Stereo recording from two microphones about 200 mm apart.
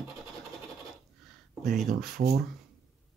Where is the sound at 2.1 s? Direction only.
50° right (ahead or behind).